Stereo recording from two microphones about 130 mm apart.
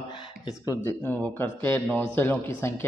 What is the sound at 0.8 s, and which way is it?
A man's voice, 15° left (ahead or behind).